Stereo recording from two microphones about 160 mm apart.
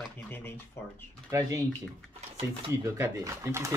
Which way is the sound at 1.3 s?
20° right (ahead or behind).